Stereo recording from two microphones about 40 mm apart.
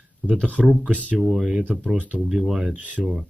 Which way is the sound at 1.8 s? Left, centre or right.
Right.